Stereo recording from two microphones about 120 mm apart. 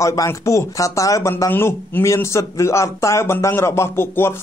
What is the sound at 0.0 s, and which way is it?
A man's voice, 25° left (ahead or behind).